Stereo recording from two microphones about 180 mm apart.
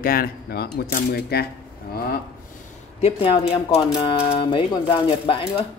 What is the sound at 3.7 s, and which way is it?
Speech, 35° left (ahead or behind).